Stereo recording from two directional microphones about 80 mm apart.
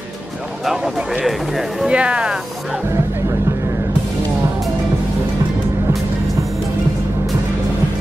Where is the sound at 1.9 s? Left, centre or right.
Centre.